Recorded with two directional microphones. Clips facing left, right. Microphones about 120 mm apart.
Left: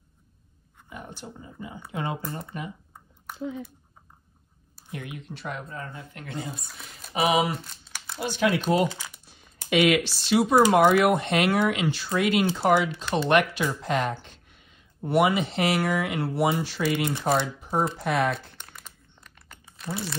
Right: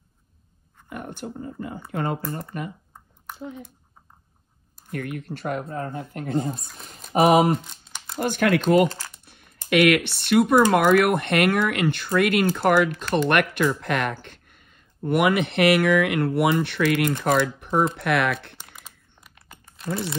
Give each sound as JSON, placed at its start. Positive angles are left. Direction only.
{"t": 0.8, "sound": "speech", "side_deg": -60}
{"t": 4.9, "sound": "speech", "side_deg": -55}
{"t": 7.5, "sound": "crumpling", "side_deg": 0}
{"t": 8.2, "sound": "speech", "side_deg": -55}
{"t": 8.8, "sound": "speech", "side_deg": 10}
{"t": 9.2, "sound": "speech", "side_deg": -60}
{"t": 18.6, "sound": "crumpling", "side_deg": -5}